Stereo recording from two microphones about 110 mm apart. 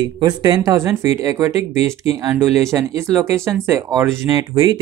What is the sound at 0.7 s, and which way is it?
Speech, 25° right (ahead or behind).